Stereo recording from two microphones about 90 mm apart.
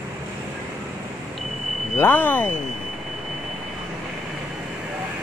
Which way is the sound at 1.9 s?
25° left (ahead or behind).